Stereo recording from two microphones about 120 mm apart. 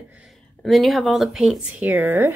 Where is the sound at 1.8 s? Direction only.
20° right (ahead or behind).